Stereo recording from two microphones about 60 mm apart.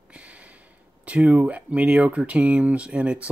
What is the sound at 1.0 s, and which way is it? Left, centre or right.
Speech, right.